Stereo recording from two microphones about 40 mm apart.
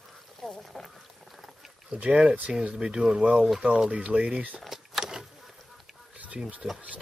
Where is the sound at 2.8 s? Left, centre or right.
Centre.